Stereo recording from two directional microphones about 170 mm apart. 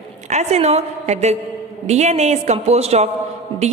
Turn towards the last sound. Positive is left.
turn(degrees=-30)  # may be behind; listen again after turning